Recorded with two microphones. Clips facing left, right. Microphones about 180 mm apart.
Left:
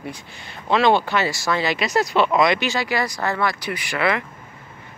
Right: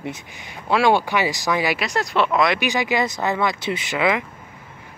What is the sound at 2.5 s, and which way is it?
Speech, 15° right (ahead or behind).